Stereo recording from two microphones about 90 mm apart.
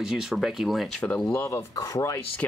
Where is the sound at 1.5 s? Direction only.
40° left (ahead or behind).